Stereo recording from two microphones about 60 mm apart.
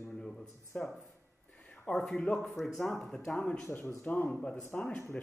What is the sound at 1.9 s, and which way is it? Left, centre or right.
Speech, centre.